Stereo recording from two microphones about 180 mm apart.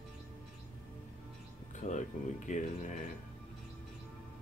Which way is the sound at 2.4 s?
45° left (ahead or behind).